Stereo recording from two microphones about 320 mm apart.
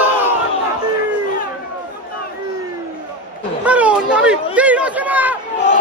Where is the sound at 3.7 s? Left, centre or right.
Centre.